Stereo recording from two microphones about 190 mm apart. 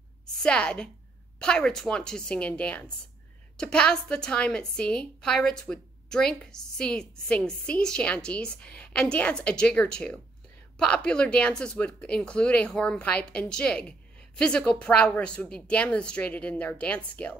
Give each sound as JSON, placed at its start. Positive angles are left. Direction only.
{"t": 0.4, "sound": "a woman's voice", "side_deg": 5}